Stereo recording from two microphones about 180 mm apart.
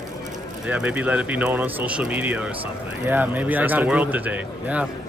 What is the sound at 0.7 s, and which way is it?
Speech, 10° right (ahead or behind).